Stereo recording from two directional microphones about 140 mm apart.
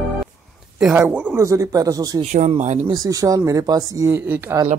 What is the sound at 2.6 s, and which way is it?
Speech, 55° right (ahead or behind).